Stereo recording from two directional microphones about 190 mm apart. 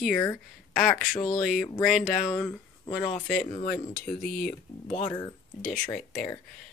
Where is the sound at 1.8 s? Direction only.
40° left (ahead or behind).